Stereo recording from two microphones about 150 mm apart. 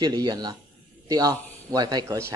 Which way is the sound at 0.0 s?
30° right (ahead or behind).